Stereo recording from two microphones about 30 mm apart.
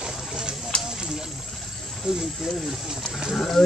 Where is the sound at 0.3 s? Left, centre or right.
Right.